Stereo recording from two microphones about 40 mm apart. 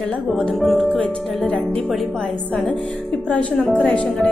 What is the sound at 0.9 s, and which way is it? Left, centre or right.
Speech, left.